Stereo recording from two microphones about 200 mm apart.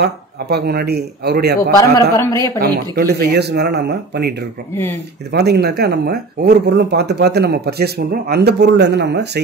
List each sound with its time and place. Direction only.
0.0 s speech: 55° right (ahead or behind)
2.1 s a woman's voice: 15° left (ahead or behind)
2.6 s speech: 55° right (ahead or behind)